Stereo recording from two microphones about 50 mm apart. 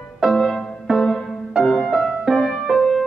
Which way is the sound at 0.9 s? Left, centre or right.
Centre.